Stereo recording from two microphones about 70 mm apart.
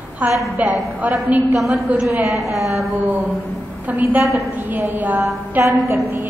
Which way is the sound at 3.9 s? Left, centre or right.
Right.